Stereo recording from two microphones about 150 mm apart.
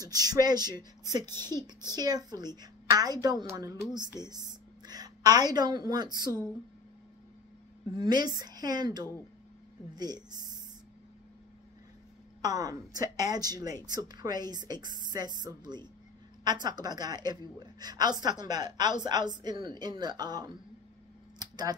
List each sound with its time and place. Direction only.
0.0 s a woman's voice: 25° right (ahead or behind)
4.8 s a sound: 25° right (ahead or behind)
5.9 s a woman's voice: 25° right (ahead or behind)
7.9 s a woman's voice: 30° right (ahead or behind)
12.4 s a woman's voice: 25° right (ahead or behind)
21.4 s a sound: 25° right (ahead or behind)